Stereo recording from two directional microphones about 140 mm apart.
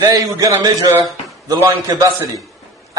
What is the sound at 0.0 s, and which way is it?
A man's voice, 25° right (ahead or behind).